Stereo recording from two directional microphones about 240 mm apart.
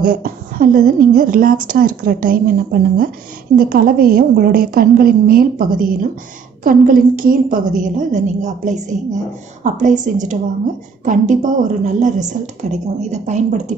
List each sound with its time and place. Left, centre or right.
0.0 s a woman's voice: right